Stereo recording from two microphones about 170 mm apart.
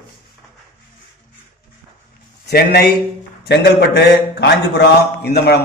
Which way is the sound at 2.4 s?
70° left (ahead or behind).